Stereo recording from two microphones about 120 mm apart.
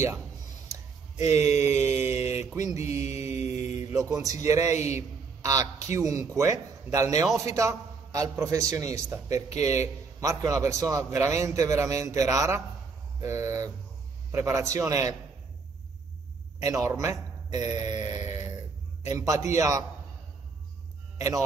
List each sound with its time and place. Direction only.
1.1 s speech: 65° left (ahead or behind)
1.6 s a man's voice: 20° right (ahead or behind)
3.3 s mantra: 65° left (ahead or behind)
3.9 s a man's voice: 30° right (ahead or behind)
16.6 s a man's voice: 25° right (ahead or behind)
18.3 s a sound: 30° right (ahead or behind)
19.0 s a man's voice: 25° right (ahead or behind)